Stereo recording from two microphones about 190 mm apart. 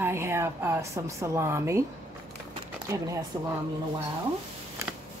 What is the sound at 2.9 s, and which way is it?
Speech, 15° right (ahead or behind).